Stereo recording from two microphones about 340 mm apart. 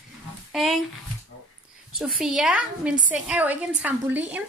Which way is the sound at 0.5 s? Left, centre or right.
Centre.